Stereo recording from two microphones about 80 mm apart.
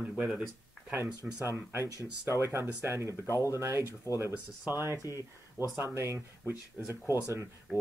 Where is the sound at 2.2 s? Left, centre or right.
Right.